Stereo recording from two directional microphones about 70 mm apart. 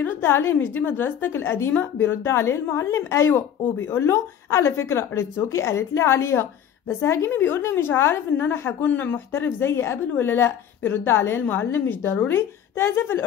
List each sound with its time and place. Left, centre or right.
0.0 s a woman's voice: left